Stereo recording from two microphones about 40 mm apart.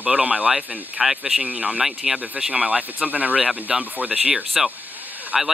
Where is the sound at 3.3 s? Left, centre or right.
Centre.